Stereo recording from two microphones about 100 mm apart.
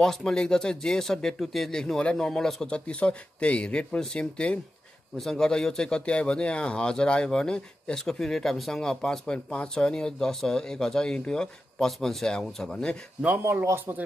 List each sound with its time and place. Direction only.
0.0 s speech: 5° left (ahead or behind)
13.4 s a man's voice: 25° right (ahead or behind)